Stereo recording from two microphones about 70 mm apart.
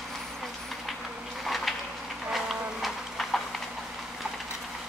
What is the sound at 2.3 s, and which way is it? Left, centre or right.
Clip-clop, centre.